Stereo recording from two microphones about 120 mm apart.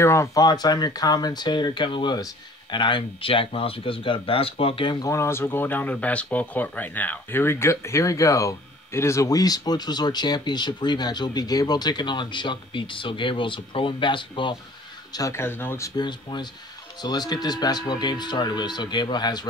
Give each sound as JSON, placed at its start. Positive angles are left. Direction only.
{"t": 0.0, "sound": "speech", "side_deg": 25}
{"t": 5.0, "sound": "speech", "side_deg": 25}
{"t": 15.1, "sound": "speech", "side_deg": 25}
{"t": 16.0, "sound": "speech", "side_deg": 40}